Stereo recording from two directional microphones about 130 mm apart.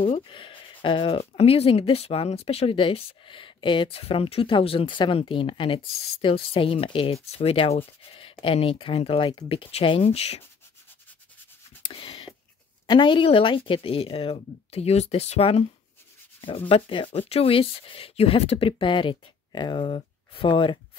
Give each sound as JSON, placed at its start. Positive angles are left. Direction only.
{"t": 0.0, "sound": "speech", "side_deg": 40}
{"t": 11.9, "sound": "a sound", "side_deg": 45}
{"t": 12.8, "sound": "speech", "side_deg": 40}